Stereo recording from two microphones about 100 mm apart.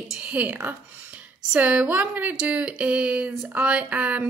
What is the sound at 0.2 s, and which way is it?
Speech, 15° right (ahead or behind).